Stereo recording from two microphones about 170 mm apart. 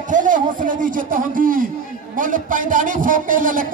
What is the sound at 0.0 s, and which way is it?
A man's voice, 50° right (ahead or behind).